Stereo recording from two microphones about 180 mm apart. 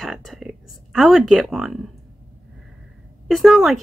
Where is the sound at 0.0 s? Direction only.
Centre (ahead or behind).